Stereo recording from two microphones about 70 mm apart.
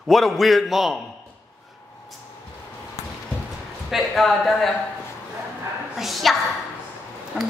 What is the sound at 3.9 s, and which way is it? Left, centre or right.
Speech, centre.